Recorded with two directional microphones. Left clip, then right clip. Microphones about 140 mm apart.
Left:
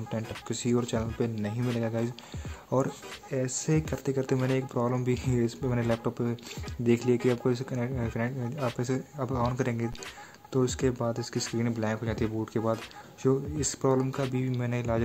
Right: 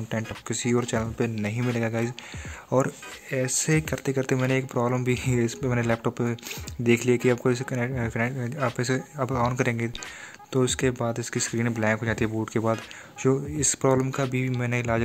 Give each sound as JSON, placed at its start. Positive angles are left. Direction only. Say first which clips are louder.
{"t": 0.1, "sound": "speech", "louder": "right 4 dB", "side_deg": -15}